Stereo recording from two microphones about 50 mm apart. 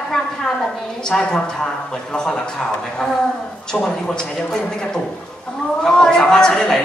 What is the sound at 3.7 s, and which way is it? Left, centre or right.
Speech, centre.